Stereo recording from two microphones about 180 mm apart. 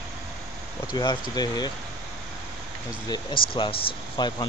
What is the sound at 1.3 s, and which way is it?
Speech, 20° left (ahead or behind).